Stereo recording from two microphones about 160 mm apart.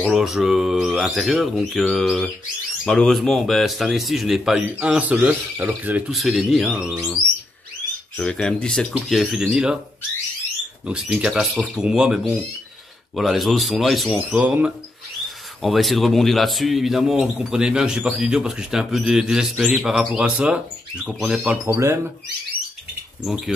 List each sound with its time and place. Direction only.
0.0 s a man's voice: centre (ahead or behind)
8.2 s a man's voice: 5° left (ahead or behind)
10.9 s a man's voice: 5° right (ahead or behind)
21.6 s speech: 15° right (ahead or behind)
23.2 s a man's voice: centre (ahead or behind)